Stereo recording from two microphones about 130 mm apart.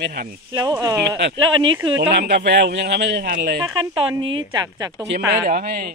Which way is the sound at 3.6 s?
30° right (ahead or behind).